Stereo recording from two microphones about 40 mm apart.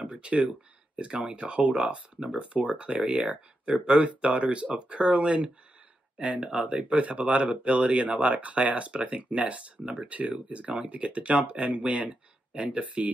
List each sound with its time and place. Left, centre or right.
0.1 s speech: right